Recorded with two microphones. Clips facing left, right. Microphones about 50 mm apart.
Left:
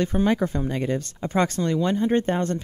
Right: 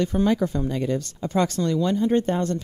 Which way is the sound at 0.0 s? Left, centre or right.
Left.